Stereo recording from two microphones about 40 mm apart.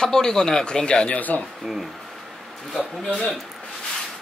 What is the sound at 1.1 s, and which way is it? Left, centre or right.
Speech, left.